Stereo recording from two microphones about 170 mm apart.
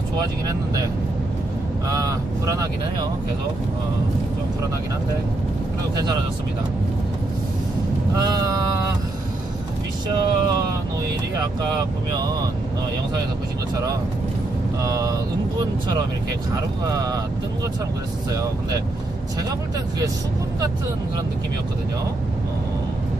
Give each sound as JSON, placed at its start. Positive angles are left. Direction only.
{"t": 1.9, "sound": "speech", "side_deg": -20}
{"t": 8.2, "sound": "vehicle", "side_deg": -20}
{"t": 10.0, "sound": "speech", "side_deg": -25}
{"t": 14.8, "sound": "speech", "side_deg": -20}
{"t": 16.9, "sound": "speech", "side_deg": -20}
{"t": 18.3, "sound": "speech", "side_deg": -20}